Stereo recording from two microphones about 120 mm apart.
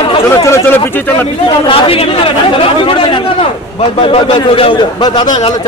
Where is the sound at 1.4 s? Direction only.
50° left (ahead or behind).